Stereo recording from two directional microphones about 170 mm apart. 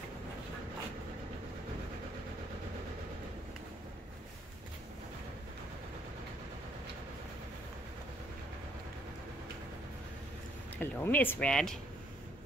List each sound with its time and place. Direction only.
10.8 s speech: 10° left (ahead or behind)